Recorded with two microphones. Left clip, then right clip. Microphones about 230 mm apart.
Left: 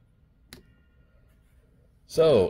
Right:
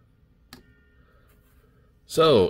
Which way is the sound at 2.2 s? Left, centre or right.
Right.